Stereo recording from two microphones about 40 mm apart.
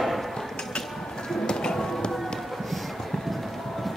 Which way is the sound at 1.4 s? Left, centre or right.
Centre.